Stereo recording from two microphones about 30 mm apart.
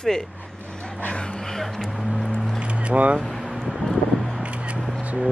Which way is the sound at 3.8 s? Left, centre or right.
Centre.